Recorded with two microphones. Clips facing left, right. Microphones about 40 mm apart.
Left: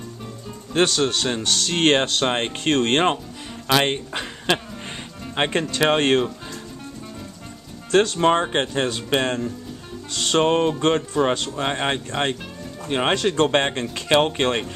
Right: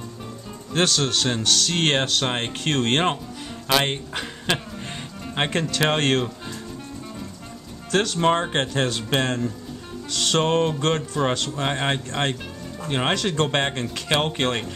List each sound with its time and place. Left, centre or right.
0.8 s music: centre
1.4 s music: left
3.6 s speech: centre
4.1 s music: centre
5.8 s speech: centre
7.9 s speech: left
8.2 s speech: centre
10.0 s music: left
11.0 s speech: centre
13.1 s music: left
14.1 s speech: centre